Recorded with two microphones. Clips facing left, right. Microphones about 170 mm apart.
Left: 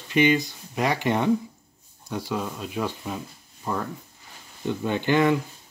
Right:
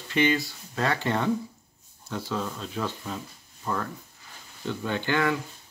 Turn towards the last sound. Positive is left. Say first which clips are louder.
# left 5 dB
turn(degrees=20)  # may be behind; listen again after turning